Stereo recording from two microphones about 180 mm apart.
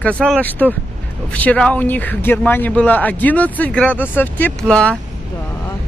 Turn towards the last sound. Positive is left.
turn(degrees=5)  # may be behind; listen again after turning